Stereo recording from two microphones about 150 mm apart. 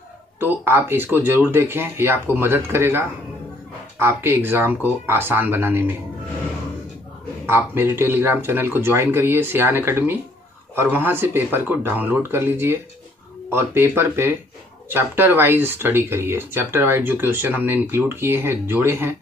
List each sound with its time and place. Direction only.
0.4 s speech: 15° right (ahead or behind)
7.4 s speech: 15° right (ahead or behind)